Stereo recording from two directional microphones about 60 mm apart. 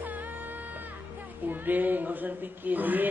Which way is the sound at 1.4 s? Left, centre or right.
Right.